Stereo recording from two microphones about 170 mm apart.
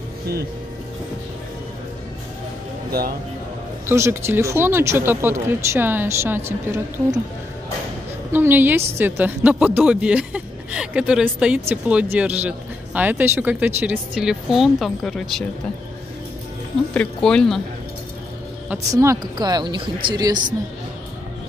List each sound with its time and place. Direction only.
3.8 s a woman's voice: 15° right (ahead or behind)
8.3 s a woman's voice: 10° right (ahead or behind)
16.9 s speech: 5° left (ahead or behind)
18.9 s speech: 20° right (ahead or behind)